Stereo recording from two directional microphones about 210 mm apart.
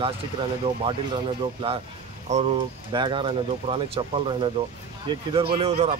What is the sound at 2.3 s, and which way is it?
Speech, 35° right (ahead or behind).